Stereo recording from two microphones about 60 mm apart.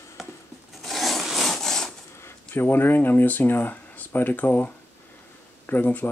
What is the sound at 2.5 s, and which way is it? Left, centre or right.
Speech, left.